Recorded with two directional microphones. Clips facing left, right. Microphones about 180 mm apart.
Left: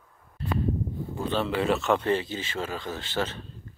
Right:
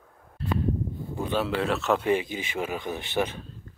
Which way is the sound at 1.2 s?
10° right (ahead or behind).